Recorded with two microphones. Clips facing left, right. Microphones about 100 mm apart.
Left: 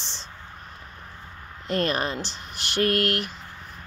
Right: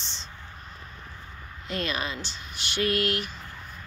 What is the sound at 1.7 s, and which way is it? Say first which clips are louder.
Speech: left 6 dB; 55° left (ahead or behind).